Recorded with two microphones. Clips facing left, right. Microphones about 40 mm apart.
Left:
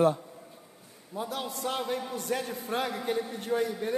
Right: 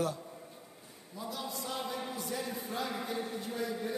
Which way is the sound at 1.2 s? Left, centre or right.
Left.